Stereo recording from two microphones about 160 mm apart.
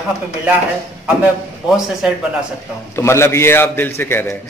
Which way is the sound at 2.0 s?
5° right (ahead or behind).